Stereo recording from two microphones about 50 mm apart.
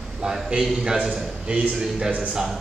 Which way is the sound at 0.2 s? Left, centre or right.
Centre.